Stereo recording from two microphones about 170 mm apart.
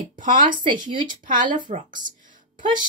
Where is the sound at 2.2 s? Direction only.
50° right (ahead or behind).